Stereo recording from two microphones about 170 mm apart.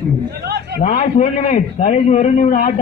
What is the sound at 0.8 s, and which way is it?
A man's voice, 55° left (ahead or behind).